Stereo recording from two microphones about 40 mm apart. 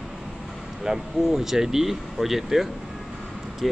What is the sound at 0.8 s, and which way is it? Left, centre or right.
Speech, centre.